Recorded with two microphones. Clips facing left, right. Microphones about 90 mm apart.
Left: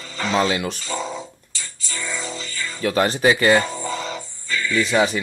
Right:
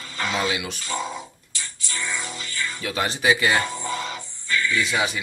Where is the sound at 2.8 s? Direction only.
45° left (ahead or behind).